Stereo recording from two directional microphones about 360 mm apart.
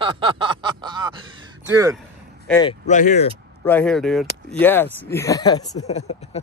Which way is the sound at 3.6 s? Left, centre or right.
Centre.